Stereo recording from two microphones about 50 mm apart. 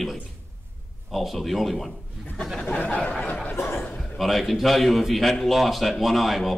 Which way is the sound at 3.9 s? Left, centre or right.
Centre.